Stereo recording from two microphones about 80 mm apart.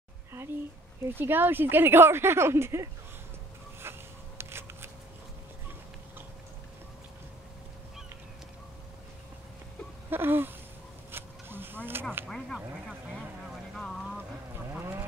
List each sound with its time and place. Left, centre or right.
1.1 s speech: right
3.8 s a sound: right
4.4 s shuffling cards: right
10.0 s a sound: right
12.3 s speech: centre
13.7 s vehicle: centre
14.7 s vehicle: right